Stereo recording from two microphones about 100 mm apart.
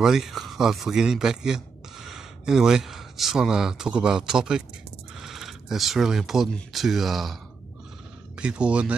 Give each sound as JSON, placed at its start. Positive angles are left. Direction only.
{"t": 0.0, "sound": "speech", "side_deg": -5}
{"t": 8.4, "sound": "speech", "side_deg": -10}